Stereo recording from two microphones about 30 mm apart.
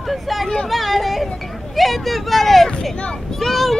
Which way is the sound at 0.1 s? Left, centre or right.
Centre.